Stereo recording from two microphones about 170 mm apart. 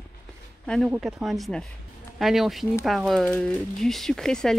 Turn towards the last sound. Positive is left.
turn(degrees=5)  # may be behind; listen again after turning